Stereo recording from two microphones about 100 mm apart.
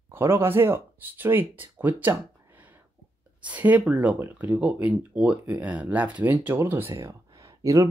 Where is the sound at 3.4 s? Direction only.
15° right (ahead or behind).